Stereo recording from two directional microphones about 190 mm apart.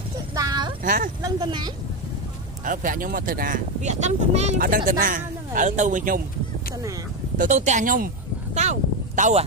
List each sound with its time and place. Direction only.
0.3 s a sound: 20° right (ahead or behind)
0.8 s speech: 45° right (ahead or behind)
1.2 s speech: 20° right (ahead or behind)
2.6 s speech: 45° right (ahead or behind)
7.3 s speech: 40° right (ahead or behind)